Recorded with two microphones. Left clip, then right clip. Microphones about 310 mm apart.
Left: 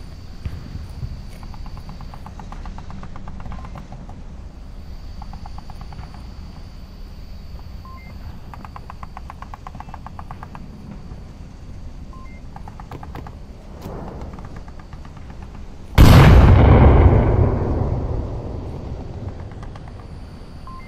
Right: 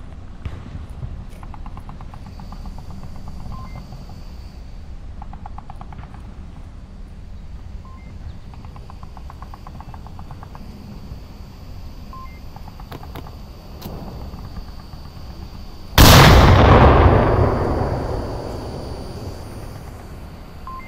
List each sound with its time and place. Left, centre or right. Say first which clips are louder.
9.3 s vehicle: left 3 dB; left
15.9 s artillery fire: right 5 dB; right